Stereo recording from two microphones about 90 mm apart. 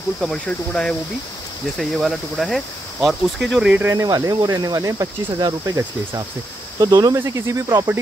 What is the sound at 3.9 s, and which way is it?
Speech, 40° right (ahead or behind).